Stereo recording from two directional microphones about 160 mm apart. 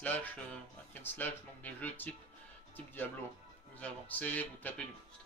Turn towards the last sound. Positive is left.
turn(degrees=10)  # may be behind; listen again after turning